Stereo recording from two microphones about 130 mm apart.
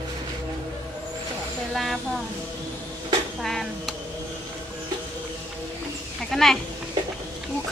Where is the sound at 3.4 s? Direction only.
Centre (ahead or behind).